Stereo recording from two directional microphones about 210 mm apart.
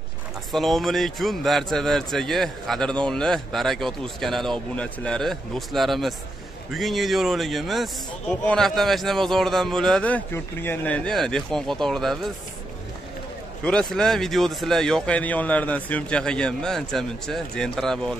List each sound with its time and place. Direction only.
0.5 s a man's voice: centre (ahead or behind)
13.7 s a man's voice: 5° left (ahead or behind)